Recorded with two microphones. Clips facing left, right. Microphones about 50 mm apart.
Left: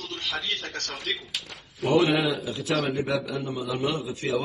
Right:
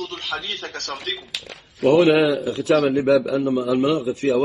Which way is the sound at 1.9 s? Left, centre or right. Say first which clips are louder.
Right 7 dB; right.